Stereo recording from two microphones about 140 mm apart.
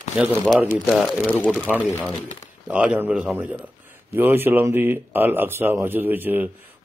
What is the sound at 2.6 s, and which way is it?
Speech, 10° right (ahead or behind).